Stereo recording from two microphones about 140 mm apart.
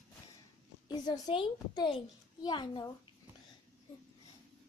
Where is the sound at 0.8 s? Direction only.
30° left (ahead or behind).